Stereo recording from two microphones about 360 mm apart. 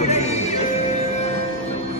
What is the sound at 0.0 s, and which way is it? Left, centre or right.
Music, centre.